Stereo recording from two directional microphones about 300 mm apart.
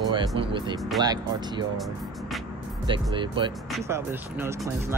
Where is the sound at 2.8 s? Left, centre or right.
Centre.